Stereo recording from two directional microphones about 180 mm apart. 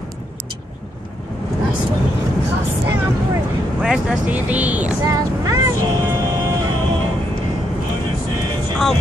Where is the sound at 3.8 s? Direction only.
5° right (ahead or behind).